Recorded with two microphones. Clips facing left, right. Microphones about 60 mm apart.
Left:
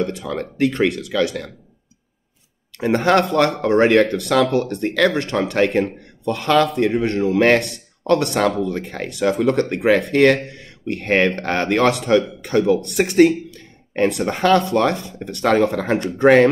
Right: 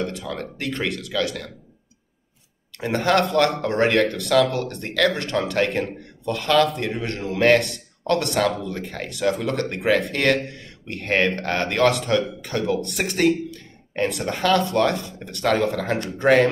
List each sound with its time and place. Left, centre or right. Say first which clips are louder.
0.1 s speech: left 5 dB; left
2.8 s speech: left 4 dB; left